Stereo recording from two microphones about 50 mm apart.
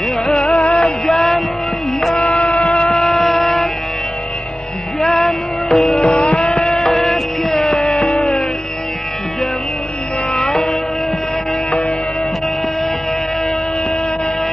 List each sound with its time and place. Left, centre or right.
0.5 s music: centre
2.6 s vehicle: centre
2.9 s a sound: centre
5.0 s music: centre
5.9 s music: centre
7.6 s music: centre
10.4 s music: centre